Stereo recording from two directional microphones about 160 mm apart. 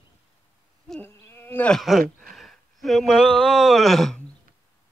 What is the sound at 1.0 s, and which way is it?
Insect, 15° left (ahead or behind).